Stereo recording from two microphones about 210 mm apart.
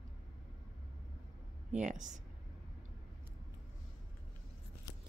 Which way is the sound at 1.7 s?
35° right (ahead or behind).